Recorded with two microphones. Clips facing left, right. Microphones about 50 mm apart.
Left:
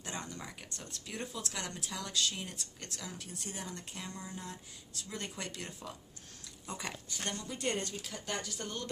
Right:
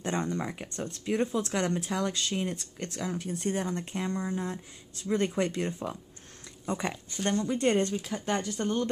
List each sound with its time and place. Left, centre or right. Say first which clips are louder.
0.0 s speech: right 12 dB; right
7.9 s speech: right 10 dB; right
8.3 s speech: right 10 dB; right